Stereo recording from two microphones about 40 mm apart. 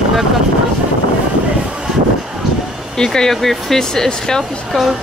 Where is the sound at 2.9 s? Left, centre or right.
Centre.